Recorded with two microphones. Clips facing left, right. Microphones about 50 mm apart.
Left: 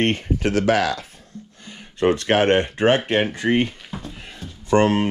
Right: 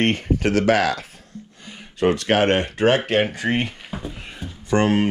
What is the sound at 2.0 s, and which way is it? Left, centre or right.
Speech, left.